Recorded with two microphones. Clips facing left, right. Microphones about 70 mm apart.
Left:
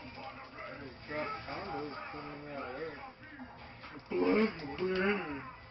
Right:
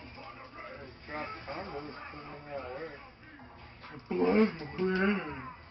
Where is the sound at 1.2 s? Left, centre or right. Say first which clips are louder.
Even; centre.